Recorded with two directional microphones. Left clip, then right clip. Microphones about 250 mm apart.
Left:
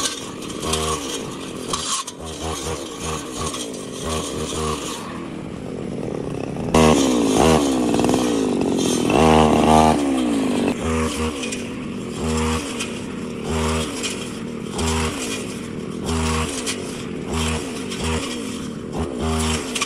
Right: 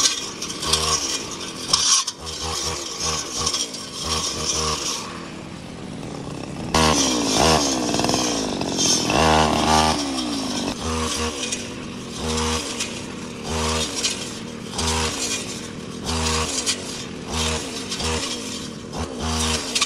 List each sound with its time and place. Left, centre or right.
0.7 s chainsaw: centre
1.7 s a sound: centre
6.7 s chainsaw: centre
11.1 s chainsaw: right
15.0 s vehicle: right